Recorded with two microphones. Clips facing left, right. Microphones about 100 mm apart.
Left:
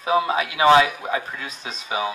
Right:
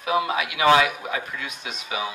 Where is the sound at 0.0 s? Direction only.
30° left (ahead or behind).